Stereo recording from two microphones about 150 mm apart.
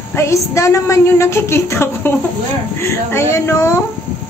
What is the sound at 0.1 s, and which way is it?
A woman's voice, 20° left (ahead or behind).